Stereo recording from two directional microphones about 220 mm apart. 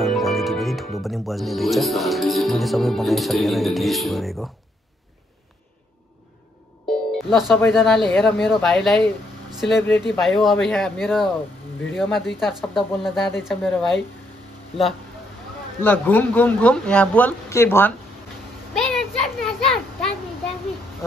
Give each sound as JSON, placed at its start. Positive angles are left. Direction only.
{"t": 0.0, "sound": "speech", "side_deg": 0}
{"t": 7.1, "sound": "speech", "side_deg": 0}
{"t": 15.8, "sound": "speech", "side_deg": 5}
{"t": 18.8, "sound": "a sound", "side_deg": 0}